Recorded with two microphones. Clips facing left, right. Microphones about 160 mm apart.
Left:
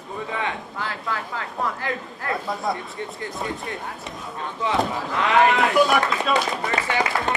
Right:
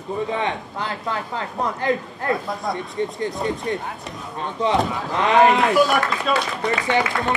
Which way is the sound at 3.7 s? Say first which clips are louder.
Right 8 dB; 25° right (ahead or behind).